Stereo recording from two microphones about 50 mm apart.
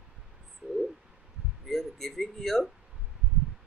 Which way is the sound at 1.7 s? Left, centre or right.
Centre.